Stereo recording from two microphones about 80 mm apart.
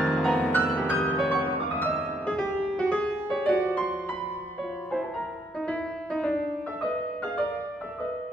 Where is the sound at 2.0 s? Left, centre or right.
Centre.